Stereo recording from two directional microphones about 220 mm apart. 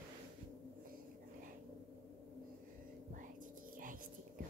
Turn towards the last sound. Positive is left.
turn(degrees=-40)  # may be behind; listen again after turning